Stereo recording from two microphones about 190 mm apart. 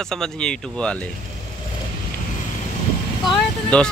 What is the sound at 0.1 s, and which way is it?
Speech, 5° left (ahead or behind).